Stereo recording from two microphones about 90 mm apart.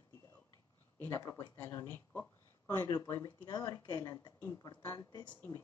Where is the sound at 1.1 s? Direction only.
40° left (ahead or behind).